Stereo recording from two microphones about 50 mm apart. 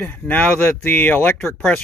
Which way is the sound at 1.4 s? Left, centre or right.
Centre.